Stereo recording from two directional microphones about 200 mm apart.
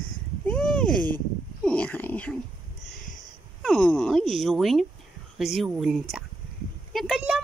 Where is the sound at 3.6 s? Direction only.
5° left (ahead or behind).